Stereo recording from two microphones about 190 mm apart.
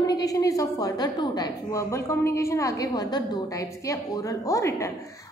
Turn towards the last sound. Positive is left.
turn(degrees=15)  # may be behind; listen again after turning